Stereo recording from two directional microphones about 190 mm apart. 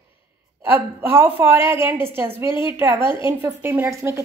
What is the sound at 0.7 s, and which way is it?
A woman's voice, 10° right (ahead or behind).